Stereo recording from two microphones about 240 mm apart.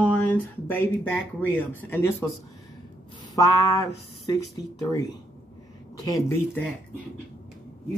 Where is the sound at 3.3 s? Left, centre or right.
Centre.